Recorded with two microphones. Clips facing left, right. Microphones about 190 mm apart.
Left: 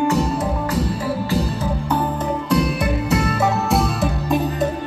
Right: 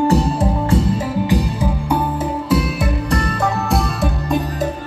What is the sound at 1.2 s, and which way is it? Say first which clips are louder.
Music: right 3 dB; 10° right (ahead or behind).